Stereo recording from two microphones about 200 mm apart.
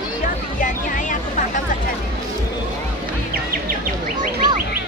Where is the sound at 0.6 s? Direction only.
40° left (ahead or behind).